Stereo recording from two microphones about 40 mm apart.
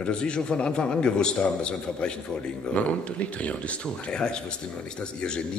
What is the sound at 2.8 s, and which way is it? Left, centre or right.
Speech, left.